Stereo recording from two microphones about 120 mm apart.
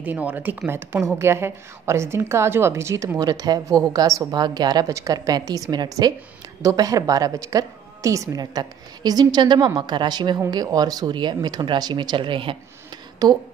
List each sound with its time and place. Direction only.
0.0 s a woman's voice: 15° right (ahead or behind); by 12.5 s 45° right (ahead or behind)
13.2 s a woman's voice: 35° right (ahead or behind)